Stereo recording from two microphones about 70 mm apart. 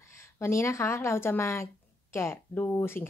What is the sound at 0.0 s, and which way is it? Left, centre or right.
A woman's voice, left.